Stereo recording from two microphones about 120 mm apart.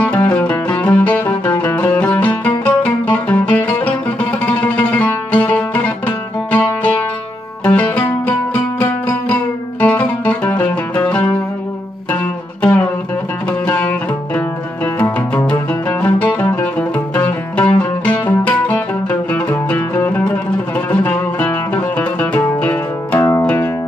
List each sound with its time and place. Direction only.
0.0 s music: 15° left (ahead or behind)
13.5 s music: 15° left (ahead or behind)
23.1 s music: 25° left (ahead or behind)